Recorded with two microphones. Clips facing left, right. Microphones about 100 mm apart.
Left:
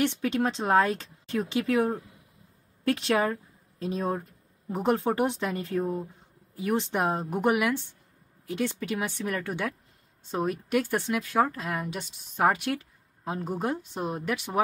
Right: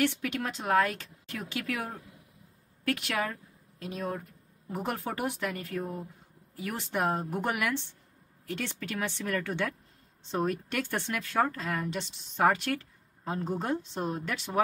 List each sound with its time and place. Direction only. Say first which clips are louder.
0.0 s speech: left 4 dB; 20° left (ahead or behind)